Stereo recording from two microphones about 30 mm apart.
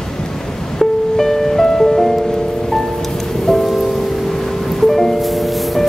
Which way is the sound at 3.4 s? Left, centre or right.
Centre.